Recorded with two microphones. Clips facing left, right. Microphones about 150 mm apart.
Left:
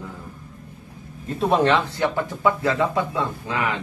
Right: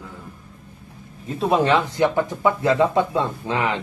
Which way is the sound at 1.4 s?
10° right (ahead or behind).